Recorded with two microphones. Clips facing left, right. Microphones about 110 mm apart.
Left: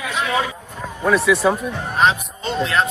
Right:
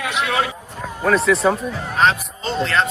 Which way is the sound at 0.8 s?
Centre (ahead or behind).